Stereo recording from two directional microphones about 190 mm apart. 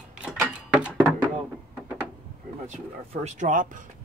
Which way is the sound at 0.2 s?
5° right (ahead or behind).